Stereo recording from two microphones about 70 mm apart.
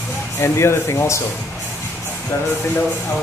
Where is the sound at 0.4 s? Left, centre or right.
Left.